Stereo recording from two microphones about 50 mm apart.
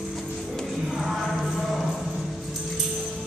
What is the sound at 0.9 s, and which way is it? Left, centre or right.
Music, centre.